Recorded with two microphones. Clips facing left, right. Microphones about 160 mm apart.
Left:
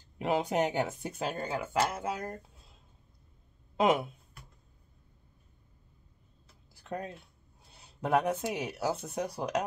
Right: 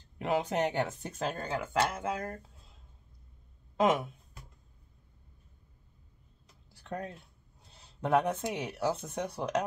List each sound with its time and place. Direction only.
0.2 s speech: 15° left (ahead or behind)
3.8 s speech: 10° left (ahead or behind)
6.7 s typing: 10° left (ahead or behind)
7.7 s a sound: 10° left (ahead or behind)
8.5 s speech: 10° left (ahead or behind)